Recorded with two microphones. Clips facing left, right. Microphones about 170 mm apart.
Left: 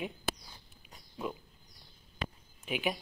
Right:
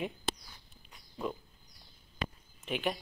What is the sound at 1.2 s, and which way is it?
Speech, centre (ahead or behind).